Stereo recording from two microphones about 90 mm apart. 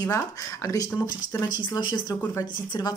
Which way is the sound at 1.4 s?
50° left (ahead or behind).